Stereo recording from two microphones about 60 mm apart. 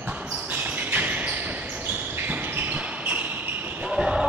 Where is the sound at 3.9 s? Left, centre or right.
Centre.